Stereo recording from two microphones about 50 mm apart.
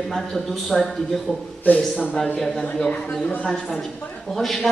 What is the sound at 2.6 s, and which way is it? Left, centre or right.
A man's voice, left.